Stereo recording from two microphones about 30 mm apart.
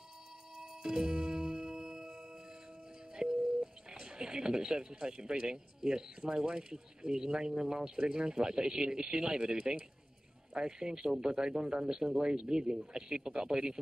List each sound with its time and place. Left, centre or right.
0.6 s music: right
3.2 s a sound: right
4.0 s speech: right